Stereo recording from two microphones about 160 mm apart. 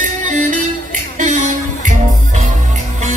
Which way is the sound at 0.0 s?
50° right (ahead or behind).